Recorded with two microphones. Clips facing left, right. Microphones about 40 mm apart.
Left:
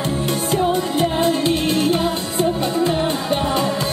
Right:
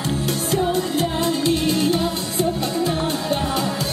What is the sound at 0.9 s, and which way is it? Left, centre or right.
Music, left.